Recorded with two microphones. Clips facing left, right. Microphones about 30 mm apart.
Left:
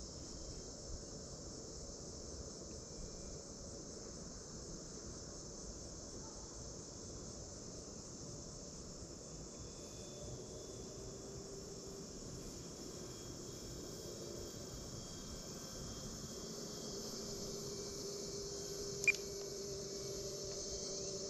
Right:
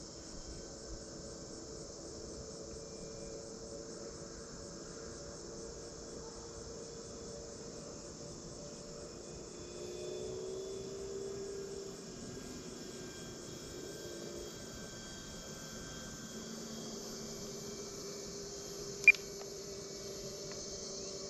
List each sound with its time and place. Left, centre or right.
9.8 s vehicle: right
19.1 s beep: right